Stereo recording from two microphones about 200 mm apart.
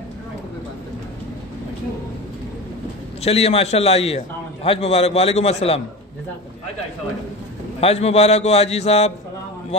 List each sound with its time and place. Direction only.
3.3 s a man's voice: 30° left (ahead or behind)
7.8 s a man's voice: 30° left (ahead or behind)